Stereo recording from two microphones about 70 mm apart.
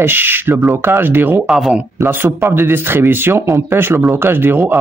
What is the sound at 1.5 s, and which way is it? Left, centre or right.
Speech, centre.